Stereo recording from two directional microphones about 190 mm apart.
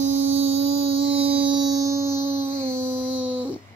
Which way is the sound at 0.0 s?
35° right (ahead or behind).